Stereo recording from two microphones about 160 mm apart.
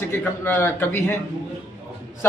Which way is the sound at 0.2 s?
15° left (ahead or behind).